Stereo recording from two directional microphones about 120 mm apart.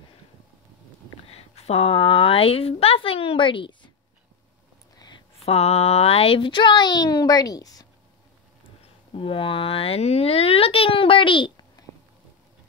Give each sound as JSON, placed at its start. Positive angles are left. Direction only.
{"t": 1.3, "sound": "a woman's voice", "side_deg": 60}
{"t": 4.9, "sound": "a sound", "side_deg": 35}
{"t": 5.4, "sound": "a child's voice", "side_deg": 60}
{"t": 8.6, "sound": "speech", "side_deg": 50}